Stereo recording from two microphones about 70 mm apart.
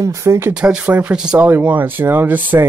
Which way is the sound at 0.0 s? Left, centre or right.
Right.